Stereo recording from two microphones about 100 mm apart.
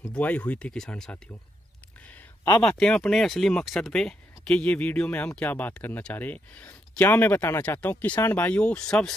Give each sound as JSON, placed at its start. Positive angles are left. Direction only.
{"t": 0.1, "sound": "speech", "side_deg": 15}
{"t": 2.8, "sound": "speech", "side_deg": 5}